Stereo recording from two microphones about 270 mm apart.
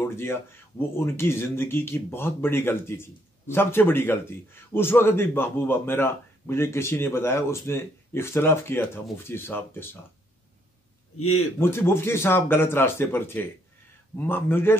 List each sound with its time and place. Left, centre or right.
0.0 s a man's voice: centre
11.1 s speech: left
11.6 s a man's voice: centre